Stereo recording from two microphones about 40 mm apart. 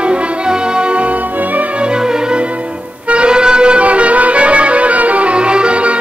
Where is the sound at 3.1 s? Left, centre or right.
Right.